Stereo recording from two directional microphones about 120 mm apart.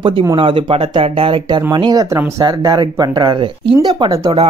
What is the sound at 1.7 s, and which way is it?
Speech, 35° right (ahead or behind).